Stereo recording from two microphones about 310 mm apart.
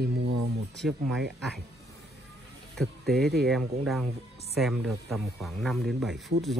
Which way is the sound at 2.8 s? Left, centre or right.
Centre.